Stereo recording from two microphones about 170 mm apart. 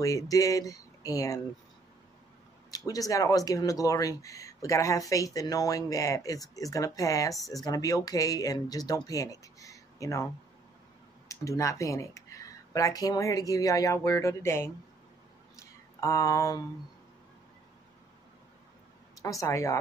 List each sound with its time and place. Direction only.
0.0 s speech: 20° left (ahead or behind)
2.7 s speech: 20° left (ahead or behind)
11.2 s speech: 20° left (ahead or behind)
15.5 s a sound: 20° left (ahead or behind)
19.4 s speech: 20° left (ahead or behind)